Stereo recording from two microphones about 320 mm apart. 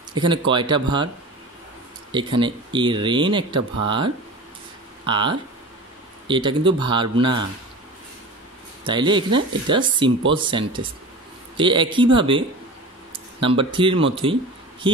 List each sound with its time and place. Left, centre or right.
0.1 s speech: centre
2.1 s speech: centre
8.8 s speech: centre